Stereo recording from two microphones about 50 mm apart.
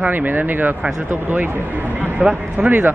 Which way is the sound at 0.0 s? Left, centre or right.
Right.